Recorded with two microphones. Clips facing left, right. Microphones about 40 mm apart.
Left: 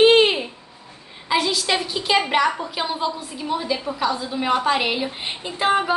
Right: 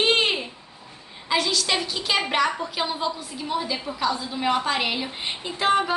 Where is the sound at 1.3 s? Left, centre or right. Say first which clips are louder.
Left 2 dB; centre.